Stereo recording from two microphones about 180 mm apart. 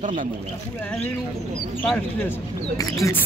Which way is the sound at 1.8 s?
10° left (ahead or behind).